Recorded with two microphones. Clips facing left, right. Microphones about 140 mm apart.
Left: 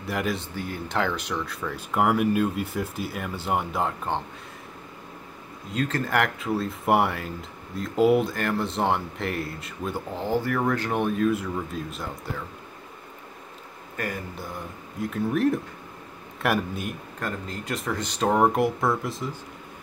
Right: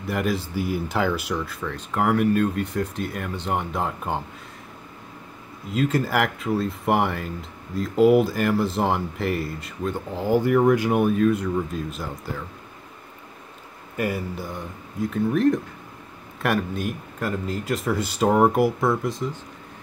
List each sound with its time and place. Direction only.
0.0 s speech: centre (ahead or behind)
5.7 s speech: 10° right (ahead or behind)
10.2 s speech: 15° right (ahead or behind)
13.9 s speech: 10° right (ahead or behind)